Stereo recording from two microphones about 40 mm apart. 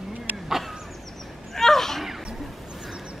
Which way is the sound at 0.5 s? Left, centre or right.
Centre.